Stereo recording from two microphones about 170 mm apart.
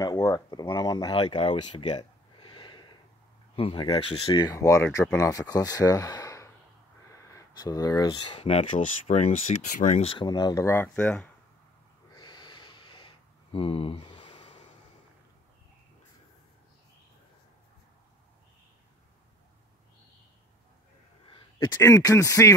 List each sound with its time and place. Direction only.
0.0 s speech: 20° left (ahead or behind); by 10.0 s 45° left (ahead or behind)
10.0 s speech: 25° left (ahead or behind); by 11.2 s 10° left (ahead or behind)
12.2 s a sound: 25° left (ahead or behind)
21.3 s speech: 25° left (ahead or behind)